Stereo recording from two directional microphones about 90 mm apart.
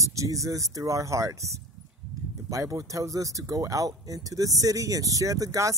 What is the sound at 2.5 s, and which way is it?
Speech, 35° right (ahead or behind).